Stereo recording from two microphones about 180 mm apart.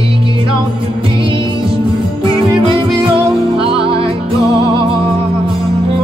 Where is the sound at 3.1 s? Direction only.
30° right (ahead or behind).